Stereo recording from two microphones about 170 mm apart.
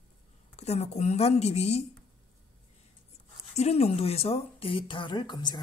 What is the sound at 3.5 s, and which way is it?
A woman's voice, 40° left (ahead or behind).